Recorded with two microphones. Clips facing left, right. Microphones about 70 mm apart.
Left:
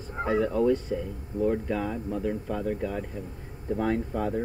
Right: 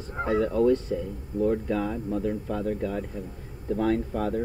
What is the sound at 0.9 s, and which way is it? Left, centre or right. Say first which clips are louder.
Speech: right 1 dB; centre.